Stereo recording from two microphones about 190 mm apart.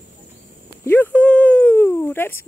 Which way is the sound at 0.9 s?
10° left (ahead or behind).